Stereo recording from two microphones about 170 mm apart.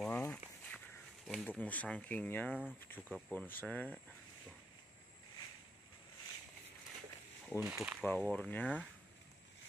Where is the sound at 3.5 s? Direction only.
10° left (ahead or behind).